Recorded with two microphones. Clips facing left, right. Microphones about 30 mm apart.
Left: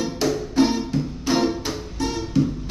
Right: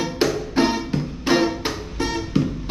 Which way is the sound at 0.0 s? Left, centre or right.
Right.